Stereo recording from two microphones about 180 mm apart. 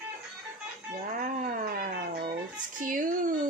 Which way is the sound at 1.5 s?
50° right (ahead or behind).